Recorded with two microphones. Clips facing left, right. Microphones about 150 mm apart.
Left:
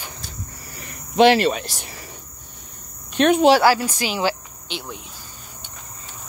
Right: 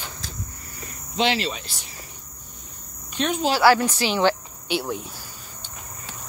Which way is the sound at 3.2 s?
65° left (ahead or behind).